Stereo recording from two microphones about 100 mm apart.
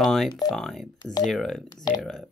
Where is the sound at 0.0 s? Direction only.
Centre (ahead or behind).